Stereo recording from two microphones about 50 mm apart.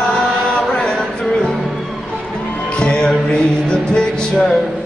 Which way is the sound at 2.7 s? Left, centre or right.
Centre.